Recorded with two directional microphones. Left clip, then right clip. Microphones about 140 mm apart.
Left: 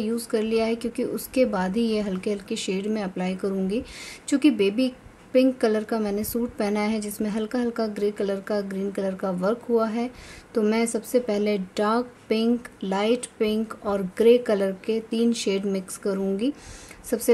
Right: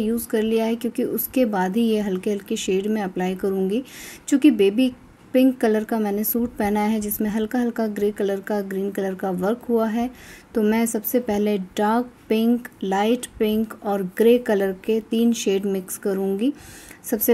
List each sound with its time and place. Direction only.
0.0 s a woman's voice: 15° right (ahead or behind)